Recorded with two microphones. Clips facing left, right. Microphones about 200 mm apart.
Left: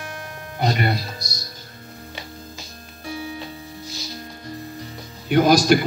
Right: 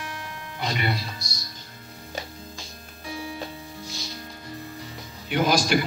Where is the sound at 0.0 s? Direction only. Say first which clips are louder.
Left 2 dB; 40° left (ahead or behind).